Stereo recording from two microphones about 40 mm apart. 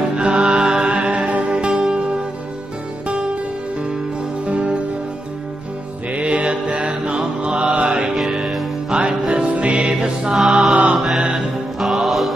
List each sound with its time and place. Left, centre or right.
0.1 s music: right
0.8 s music: right
4.5 s music: right
6.1 s mantra: right
8.2 s music: centre
8.9 s music: right
10.5 s mantra: right
11.3 s music: centre